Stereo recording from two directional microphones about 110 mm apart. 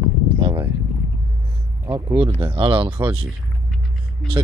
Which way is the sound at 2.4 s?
50° right (ahead or behind).